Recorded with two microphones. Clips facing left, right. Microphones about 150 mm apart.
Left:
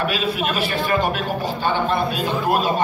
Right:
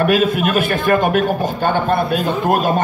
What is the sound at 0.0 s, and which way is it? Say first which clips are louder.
A man's voice: right 7 dB; 50° right (ahead or behind).